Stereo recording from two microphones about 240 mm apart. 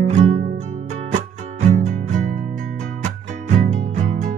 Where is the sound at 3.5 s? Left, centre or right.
Right.